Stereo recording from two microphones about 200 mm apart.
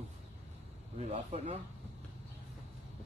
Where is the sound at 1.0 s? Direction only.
30° right (ahead or behind).